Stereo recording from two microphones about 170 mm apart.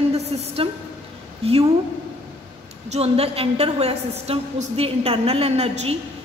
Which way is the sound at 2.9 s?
35° right (ahead or behind).